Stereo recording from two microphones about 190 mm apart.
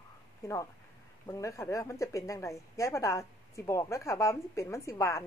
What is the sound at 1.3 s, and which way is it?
Speech, 15° left (ahead or behind).